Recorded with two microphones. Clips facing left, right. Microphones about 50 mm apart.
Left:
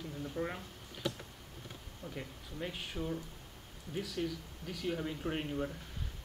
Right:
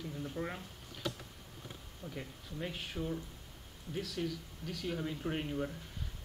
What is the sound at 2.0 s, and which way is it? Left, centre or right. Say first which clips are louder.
Speech: even; centre.